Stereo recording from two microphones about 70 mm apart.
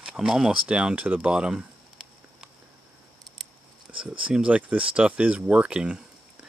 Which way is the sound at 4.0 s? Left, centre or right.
Centre.